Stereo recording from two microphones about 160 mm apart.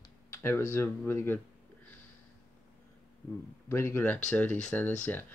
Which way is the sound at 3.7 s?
15° left (ahead or behind).